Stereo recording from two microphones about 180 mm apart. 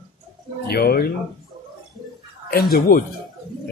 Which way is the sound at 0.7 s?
60° left (ahead or behind).